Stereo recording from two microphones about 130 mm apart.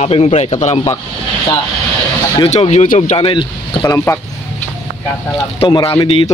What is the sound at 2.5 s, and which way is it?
Speech, 60° left (ahead or behind).